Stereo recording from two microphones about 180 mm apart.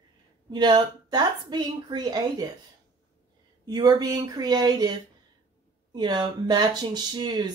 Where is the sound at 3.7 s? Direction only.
25° right (ahead or behind).